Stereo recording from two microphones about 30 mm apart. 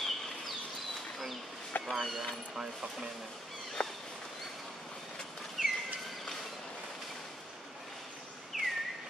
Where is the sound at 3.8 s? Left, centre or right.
Left.